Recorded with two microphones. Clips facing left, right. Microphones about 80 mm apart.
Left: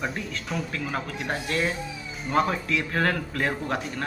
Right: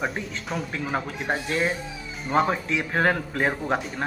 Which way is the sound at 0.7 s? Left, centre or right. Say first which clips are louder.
Right 2 dB; right.